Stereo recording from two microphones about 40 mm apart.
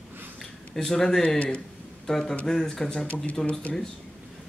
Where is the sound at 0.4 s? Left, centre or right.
Centre.